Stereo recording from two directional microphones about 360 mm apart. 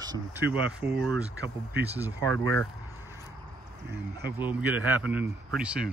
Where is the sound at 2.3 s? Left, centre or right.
Right.